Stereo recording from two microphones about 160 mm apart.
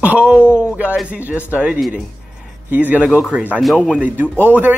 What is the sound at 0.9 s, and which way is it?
A man's voice, 10° right (ahead or behind).